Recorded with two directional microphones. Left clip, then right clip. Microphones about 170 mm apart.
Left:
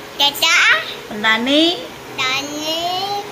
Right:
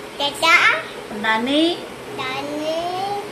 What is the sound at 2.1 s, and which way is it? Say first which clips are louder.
Speech: left 6 dB; 10° right (ahead or behind).